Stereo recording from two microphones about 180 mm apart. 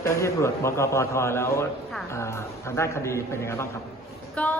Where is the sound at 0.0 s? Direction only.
15° left (ahead or behind).